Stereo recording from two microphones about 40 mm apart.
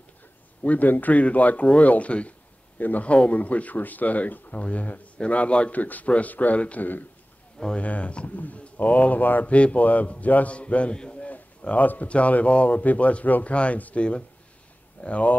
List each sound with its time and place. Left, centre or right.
0.7 s speech: left
5.8 s speech: left
9.5 s a man's voice: left
11.0 s bird: left
11.7 s speech: left